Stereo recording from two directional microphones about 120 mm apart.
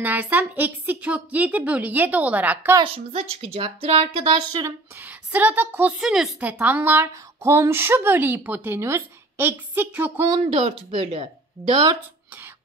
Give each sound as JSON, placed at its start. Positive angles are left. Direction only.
{"t": 0.0, "sound": "a woman's voice", "side_deg": -15}
{"t": 2.8, "sound": "a woman's voice", "side_deg": -50}
{"t": 4.6, "sound": "a woman's voice", "side_deg": -15}
{"t": 10.4, "sound": "a woman's voice", "side_deg": -55}